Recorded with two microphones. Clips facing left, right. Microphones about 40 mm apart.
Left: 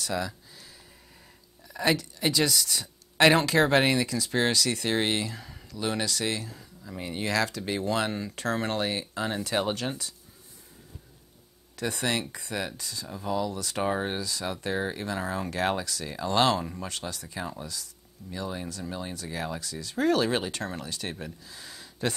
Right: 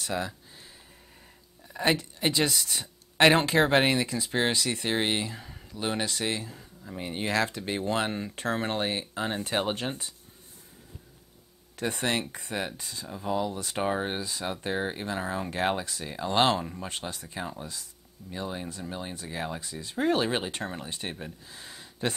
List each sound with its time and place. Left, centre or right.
0.0 s a sound: right
1.8 s speech: right
11.7 s speech: right
13.8 s speech: centre
14.1 s speech: right
15.5 s speech: right
21.5 s a sound: right